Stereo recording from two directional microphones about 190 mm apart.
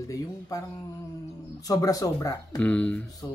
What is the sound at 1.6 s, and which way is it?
Speech, 20° left (ahead or behind).